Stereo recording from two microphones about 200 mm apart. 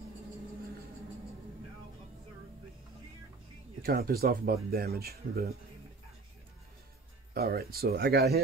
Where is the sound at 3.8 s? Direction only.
50° right (ahead or behind).